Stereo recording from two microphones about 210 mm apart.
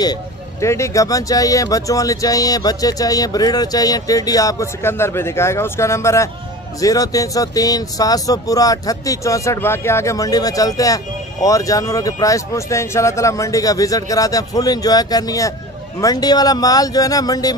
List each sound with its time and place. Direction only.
0.0 s speech: 15° left (ahead or behind)